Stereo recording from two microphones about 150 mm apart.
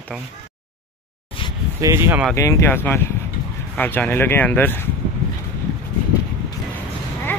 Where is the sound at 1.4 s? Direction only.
35° left (ahead or behind).